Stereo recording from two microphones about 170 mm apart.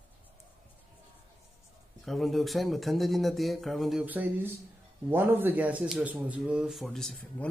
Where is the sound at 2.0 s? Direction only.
Centre (ahead or behind).